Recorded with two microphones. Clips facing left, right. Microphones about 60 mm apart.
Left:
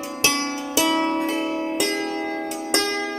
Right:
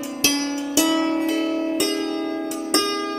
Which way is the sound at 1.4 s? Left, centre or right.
Left.